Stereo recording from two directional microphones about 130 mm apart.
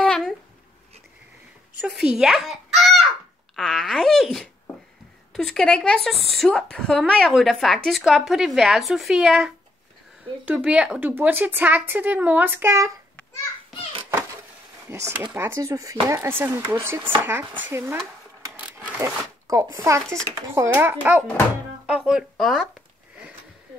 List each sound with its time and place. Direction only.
0.0 s a sound: 5° left (ahead or behind)
1.8 s a child's voice: 5° right (ahead or behind); by 12.9 s 20° right (ahead or behind)
14.9 s speech: 20° right (ahead or behind)
18.9 s a woman's voice: 25° right (ahead or behind); by 22.7 s centre (ahead or behind)